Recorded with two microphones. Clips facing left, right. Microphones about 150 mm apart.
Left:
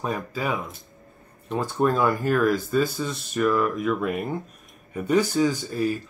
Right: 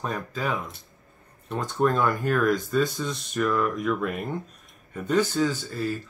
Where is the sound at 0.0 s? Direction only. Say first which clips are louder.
Left 2 dB; 10° left (ahead or behind).